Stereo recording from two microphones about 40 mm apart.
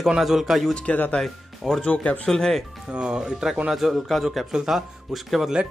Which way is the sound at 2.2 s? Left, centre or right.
Centre.